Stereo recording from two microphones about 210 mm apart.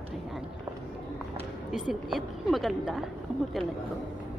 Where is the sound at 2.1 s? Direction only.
Centre (ahead or behind).